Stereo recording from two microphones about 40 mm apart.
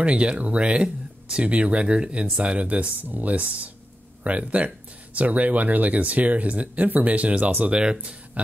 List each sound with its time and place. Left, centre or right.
0.0 s speech: right
2.4 s speech: right
7.8 s speech: right